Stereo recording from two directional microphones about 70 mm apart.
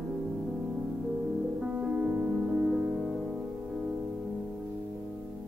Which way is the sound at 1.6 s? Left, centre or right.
Centre.